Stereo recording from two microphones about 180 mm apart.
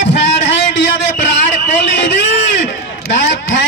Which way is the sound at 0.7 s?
75° left (ahead or behind).